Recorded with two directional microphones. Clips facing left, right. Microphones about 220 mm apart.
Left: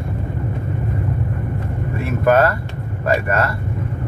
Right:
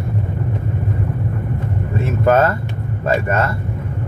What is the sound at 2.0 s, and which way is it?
Vehicle, 25° right (ahead or behind).